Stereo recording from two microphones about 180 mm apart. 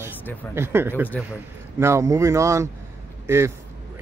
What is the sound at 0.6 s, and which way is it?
Speech, 10° right (ahead or behind).